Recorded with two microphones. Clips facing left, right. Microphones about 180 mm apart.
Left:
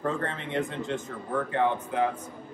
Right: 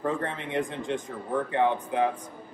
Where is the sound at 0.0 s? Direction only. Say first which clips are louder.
Right 1 dB; 15° right (ahead or behind).